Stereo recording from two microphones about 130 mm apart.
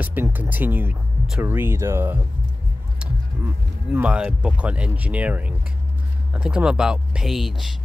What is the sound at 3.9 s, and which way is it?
Speech, 10° right (ahead or behind).